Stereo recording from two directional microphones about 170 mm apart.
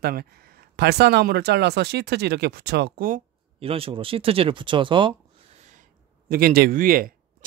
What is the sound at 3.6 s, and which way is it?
Speech, 35° right (ahead or behind).